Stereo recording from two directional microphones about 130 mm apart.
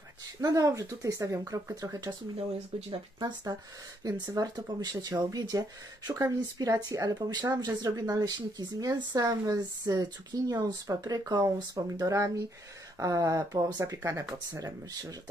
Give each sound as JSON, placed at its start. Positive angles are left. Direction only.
{"t": 0.4, "sound": "speech", "side_deg": -25}